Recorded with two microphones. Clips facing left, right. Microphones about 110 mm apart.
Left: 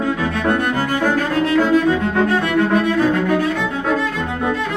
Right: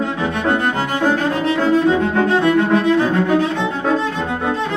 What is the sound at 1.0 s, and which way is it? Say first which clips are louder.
Music: right 2 dB; 25° right (ahead or behind).